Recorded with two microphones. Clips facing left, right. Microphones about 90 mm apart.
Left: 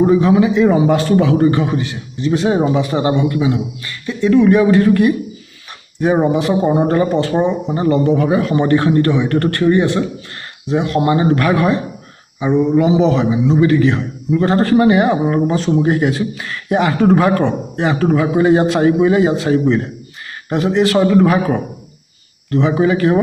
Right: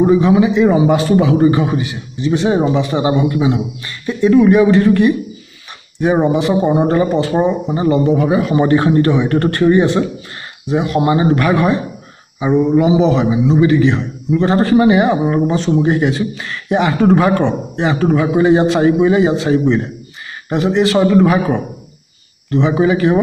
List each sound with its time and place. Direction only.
0.0 s a man's voice: centre (ahead or behind)
3.0 s speech: 10° right (ahead or behind)
3.3 s a man's voice: 20° right (ahead or behind)
10.7 s a man's voice: 10° right (ahead or behind)